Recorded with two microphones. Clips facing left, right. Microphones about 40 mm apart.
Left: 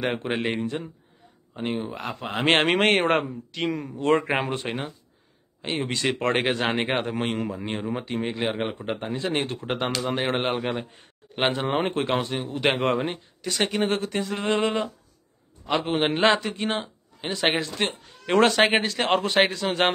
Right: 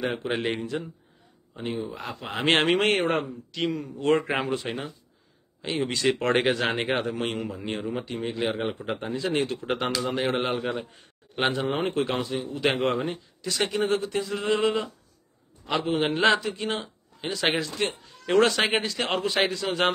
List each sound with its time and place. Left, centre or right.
0.0 s a man's voice: left
0.3 s speech: left
1.5 s a man's voice: left
6.1 s speech: centre
6.8 s a man's voice: left
8.2 s a man's voice: left
9.8 s speech: left
10.1 s a man's voice: left